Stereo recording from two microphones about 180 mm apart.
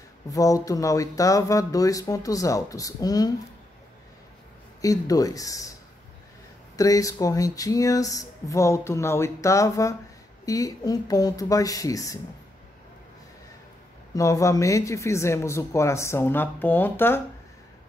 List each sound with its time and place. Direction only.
0.3 s speech: 20° left (ahead or behind)
4.8 s speech: 20° left (ahead or behind)
6.8 s speech: 20° left (ahead or behind)
14.1 s speech: 15° left (ahead or behind)